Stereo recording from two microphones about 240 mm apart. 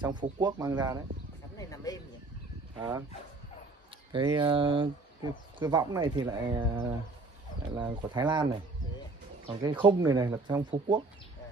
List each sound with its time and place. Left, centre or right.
0.0 s speech: centre
1.6 s a sound: centre
4.1 s speech: centre
9.5 s speech: centre